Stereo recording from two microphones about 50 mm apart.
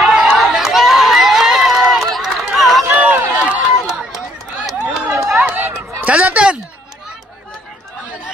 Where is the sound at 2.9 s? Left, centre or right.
Right.